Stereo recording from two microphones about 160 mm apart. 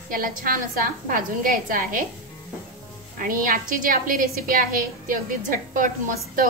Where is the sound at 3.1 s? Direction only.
60° right (ahead or behind).